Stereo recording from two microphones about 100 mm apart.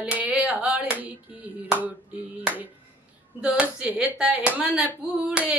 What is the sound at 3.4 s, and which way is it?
Speech, 10° right (ahead or behind).